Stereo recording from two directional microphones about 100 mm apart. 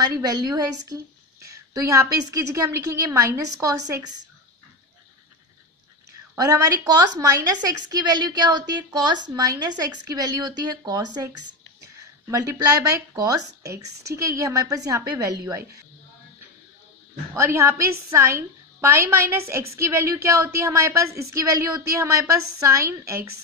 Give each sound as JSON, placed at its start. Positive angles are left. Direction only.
{"t": 0.0, "sound": "speech", "side_deg": -40}
{"t": 1.4, "sound": "a sound", "side_deg": -30}
{"t": 2.5, "sound": "a woman's voice", "side_deg": -35}
{"t": 6.3, "sound": "speech", "side_deg": -35}
{"t": 17.4, "sound": "a woman's voice", "side_deg": -25}